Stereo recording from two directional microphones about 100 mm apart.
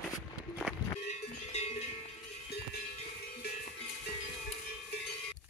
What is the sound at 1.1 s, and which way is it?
Cowbell, 90° left.